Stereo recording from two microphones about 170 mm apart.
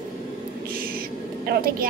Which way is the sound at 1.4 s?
60° right (ahead or behind).